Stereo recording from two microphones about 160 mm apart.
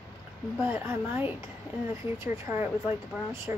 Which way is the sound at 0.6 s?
15° right (ahead or behind).